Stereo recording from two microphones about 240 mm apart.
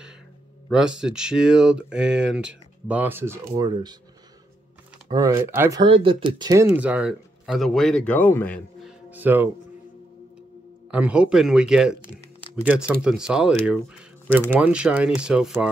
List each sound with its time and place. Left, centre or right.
0.7 s speech: centre
5.0 s speech: centre
9.1 s speech: centre
10.9 s speech: centre